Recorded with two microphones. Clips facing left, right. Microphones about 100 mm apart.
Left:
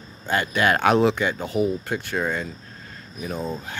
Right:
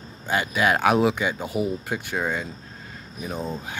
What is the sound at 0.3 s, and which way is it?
Speech, 10° right (ahead or behind).